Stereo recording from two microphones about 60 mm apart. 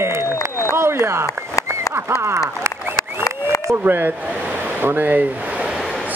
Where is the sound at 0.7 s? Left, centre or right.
Right.